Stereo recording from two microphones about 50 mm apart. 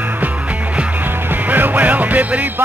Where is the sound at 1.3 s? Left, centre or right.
Right.